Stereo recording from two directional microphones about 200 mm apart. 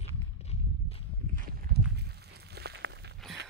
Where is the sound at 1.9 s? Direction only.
55° right (ahead or behind).